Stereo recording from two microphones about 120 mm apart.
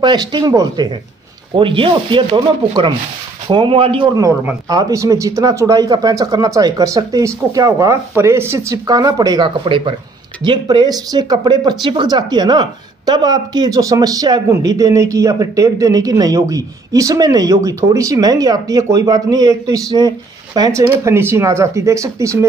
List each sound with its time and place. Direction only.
0.0 s speech: 40° right (ahead or behind)
0.5 s a woman's voice: 30° right (ahead or behind)
1.5 s speech: 45° right (ahead or behind)
4.1 s a woman's voice: 30° right (ahead or behind)
20.9 s a woman's voice: 20° right (ahead or behind)